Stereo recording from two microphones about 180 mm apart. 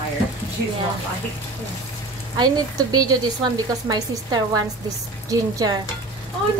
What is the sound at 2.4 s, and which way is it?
A woman's voice, 20° right (ahead or behind).